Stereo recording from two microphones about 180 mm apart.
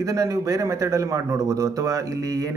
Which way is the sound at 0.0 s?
20° right (ahead or behind).